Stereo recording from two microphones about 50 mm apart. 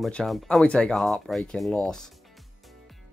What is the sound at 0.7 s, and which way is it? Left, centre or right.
Speech, centre.